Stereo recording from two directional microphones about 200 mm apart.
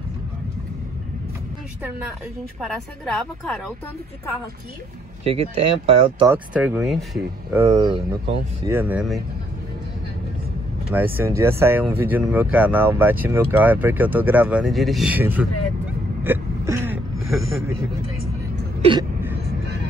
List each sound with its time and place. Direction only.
2.6 s speech: 5° left (ahead or behind)
5.2 s speech: 30° right (ahead or behind)
6.2 s speech: 5° right (ahead or behind)
7.6 s speech: 15° right (ahead or behind)
11.0 s speech: 10° right (ahead or behind)
16.3 s a sound: 10° right (ahead or behind)
18.8 s a sound: 25° right (ahead or behind)